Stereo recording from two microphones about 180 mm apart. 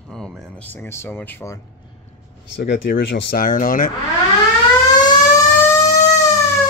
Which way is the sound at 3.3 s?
50° left (ahead or behind).